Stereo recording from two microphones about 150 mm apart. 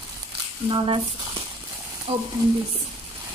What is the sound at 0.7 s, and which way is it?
Speech, 35° right (ahead or behind).